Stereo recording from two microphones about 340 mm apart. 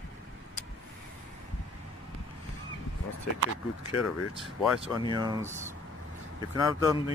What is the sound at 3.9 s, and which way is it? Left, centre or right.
Speech, left.